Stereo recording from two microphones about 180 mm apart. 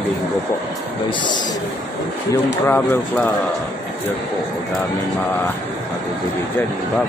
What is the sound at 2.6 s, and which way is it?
Speech, 10° left (ahead or behind).